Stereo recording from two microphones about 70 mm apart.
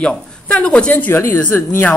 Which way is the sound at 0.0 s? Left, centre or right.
Centre.